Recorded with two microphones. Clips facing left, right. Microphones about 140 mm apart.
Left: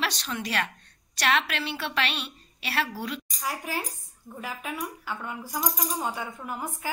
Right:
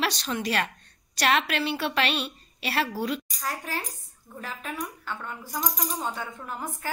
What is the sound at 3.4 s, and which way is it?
Speech, 10° left (ahead or behind).